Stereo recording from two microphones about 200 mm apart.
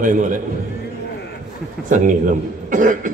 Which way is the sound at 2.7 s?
40° right (ahead or behind).